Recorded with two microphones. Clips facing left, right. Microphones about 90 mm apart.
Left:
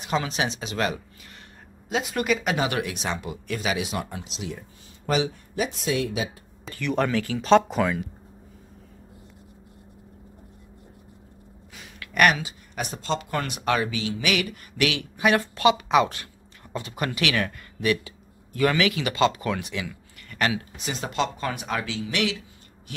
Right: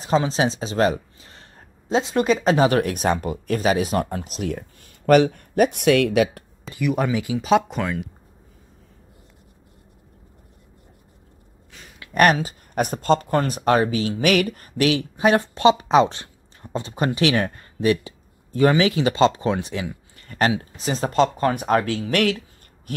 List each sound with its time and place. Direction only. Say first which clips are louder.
0.0 s speech: right 6 dB; 35° right (ahead or behind); by 6.4 s 70° right (ahead or behind)
6.7 s speech: right 2 dB; 10° right (ahead or behind)
12.0 s speech: right 4 dB; 35° right (ahead or behind)
22.9 s a sound: right 8 dB; 45° right (ahead or behind)